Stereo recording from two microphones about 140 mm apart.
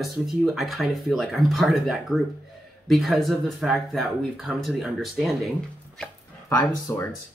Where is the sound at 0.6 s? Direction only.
Centre (ahead or behind).